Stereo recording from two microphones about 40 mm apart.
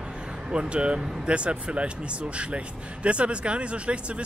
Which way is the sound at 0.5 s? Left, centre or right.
Right.